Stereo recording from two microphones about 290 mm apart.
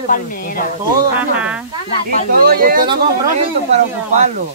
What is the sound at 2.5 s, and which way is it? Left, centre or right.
Speech, right.